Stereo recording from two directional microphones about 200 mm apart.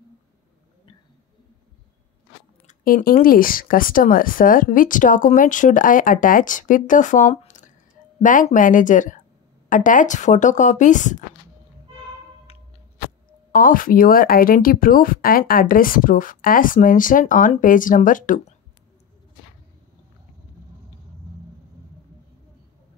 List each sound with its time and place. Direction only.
2.6 s speech: 45° left (ahead or behind)
13.5 s speech: 45° left (ahead or behind)